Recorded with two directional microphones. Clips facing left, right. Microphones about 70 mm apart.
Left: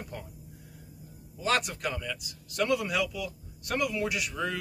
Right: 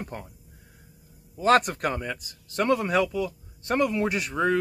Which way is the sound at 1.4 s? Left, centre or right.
Right.